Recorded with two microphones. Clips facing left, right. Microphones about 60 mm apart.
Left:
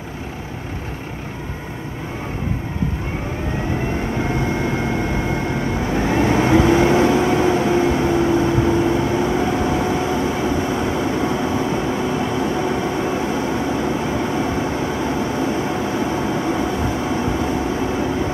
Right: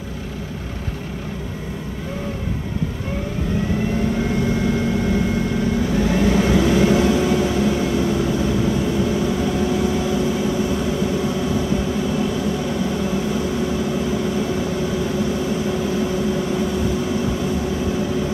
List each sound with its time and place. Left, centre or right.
4.2 s vehicle: left